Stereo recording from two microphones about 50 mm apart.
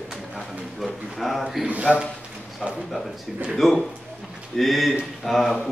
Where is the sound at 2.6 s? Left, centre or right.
Centre.